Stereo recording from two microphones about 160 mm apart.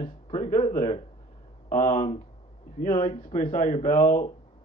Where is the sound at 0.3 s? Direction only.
45° left (ahead or behind).